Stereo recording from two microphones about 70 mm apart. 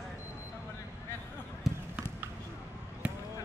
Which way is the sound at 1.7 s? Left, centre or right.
Centre.